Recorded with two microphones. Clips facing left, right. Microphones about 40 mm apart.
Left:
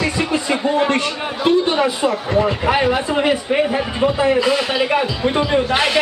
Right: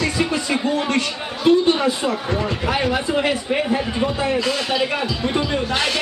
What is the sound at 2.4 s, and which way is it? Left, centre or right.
Speech, centre.